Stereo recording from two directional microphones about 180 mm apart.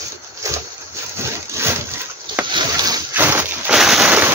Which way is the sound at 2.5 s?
20° right (ahead or behind).